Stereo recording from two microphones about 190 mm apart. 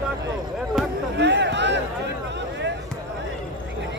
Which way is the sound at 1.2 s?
65° right (ahead or behind).